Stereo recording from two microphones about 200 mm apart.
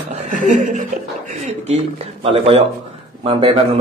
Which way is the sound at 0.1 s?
40° right (ahead or behind).